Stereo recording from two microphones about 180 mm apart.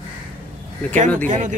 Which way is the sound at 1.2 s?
45° right (ahead or behind).